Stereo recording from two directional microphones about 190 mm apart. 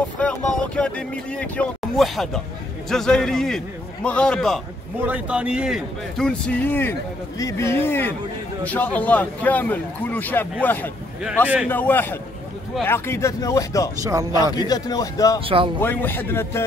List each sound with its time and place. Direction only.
0.2 s a man's voice: 5° left (ahead or behind)
5.0 s a man's voice: 5° right (ahead or behind); by 15.4 s 20° left (ahead or behind)
15.4 s speech: 30° right (ahead or behind)
15.8 s a man's voice: 10° left (ahead or behind)